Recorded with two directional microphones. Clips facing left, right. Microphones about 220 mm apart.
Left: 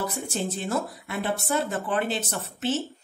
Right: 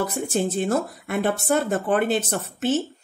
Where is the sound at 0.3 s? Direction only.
55° right (ahead or behind).